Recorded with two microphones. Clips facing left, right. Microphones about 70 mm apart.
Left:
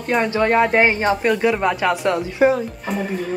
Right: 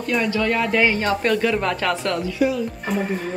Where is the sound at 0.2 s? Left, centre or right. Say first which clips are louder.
Left 7 dB; left.